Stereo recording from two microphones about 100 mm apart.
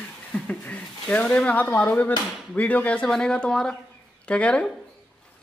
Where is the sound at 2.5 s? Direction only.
15° left (ahead or behind).